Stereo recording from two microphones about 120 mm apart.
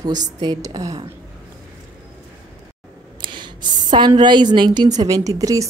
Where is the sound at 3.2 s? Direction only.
40° right (ahead or behind).